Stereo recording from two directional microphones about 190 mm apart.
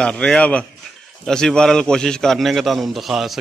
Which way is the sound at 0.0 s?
5° left (ahead or behind).